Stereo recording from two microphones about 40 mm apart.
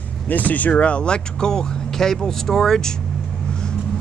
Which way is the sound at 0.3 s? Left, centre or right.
Left.